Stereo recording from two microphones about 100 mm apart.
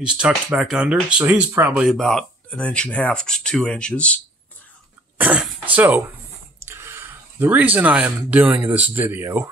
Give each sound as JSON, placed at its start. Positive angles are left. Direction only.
{"t": 0.0, "sound": "speech", "side_deg": -10}
{"t": 1.9, "sound": "speech", "side_deg": 5}
{"t": 5.1, "sound": "throat clearing", "side_deg": -15}
{"t": 6.6, "sound": "speech", "side_deg": -25}